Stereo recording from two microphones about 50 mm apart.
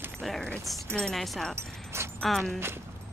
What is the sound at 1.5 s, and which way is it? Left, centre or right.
Dog, right.